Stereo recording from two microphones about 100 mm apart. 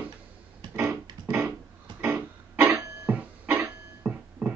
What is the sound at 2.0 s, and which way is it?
Music, 15° right (ahead or behind).